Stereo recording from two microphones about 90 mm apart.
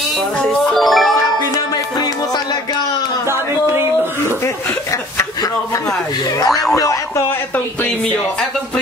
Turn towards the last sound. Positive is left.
turn(degrees=35)  # may be behind; listen again after turning